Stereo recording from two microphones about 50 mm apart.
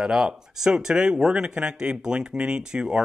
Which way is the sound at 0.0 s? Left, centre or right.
Centre.